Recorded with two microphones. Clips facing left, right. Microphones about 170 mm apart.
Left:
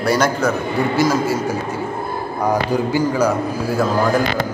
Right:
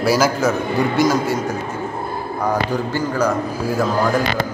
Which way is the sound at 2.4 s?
10° left (ahead or behind).